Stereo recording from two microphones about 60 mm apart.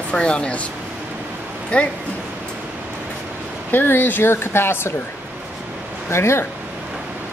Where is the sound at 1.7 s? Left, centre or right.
Left.